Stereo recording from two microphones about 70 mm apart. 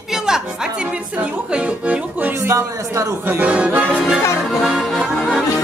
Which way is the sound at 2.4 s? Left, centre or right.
Right.